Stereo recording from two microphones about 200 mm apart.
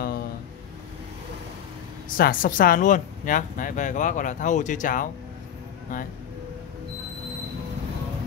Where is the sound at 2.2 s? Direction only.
45° left (ahead or behind).